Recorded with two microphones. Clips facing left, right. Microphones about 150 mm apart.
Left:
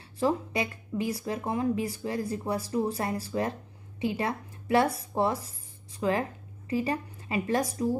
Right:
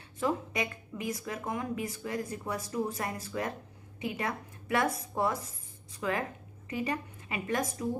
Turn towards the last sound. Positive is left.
turn(degrees=35)  # may be behind; listen again after turning